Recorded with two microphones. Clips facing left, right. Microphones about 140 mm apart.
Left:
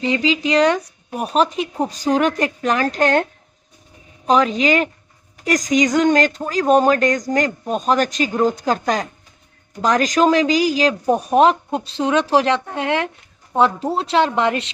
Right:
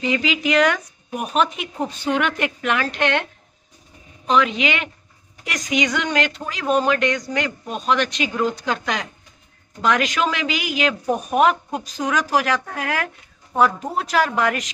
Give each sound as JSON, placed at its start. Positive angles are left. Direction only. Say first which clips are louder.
{"t": 0.0, "sound": "speech", "louder": "left 3 dB", "side_deg": 30}
{"t": 4.3, "sound": "a woman's voice", "louder": "left 4 dB", "side_deg": 40}